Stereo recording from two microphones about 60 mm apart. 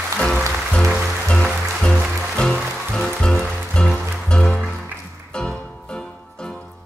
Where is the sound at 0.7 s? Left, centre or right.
Centre.